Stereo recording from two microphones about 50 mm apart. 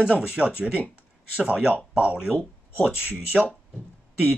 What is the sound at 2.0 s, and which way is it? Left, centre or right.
Speech, centre.